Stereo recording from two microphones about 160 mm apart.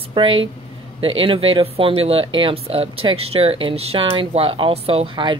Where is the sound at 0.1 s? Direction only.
30° right (ahead or behind).